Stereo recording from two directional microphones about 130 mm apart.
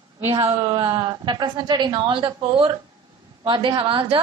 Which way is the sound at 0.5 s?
40° right (ahead or behind).